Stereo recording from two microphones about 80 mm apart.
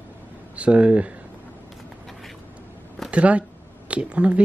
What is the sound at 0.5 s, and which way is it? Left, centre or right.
Speech, centre.